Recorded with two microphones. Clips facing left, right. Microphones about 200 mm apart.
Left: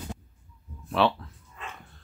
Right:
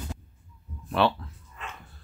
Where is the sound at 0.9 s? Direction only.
Centre (ahead or behind).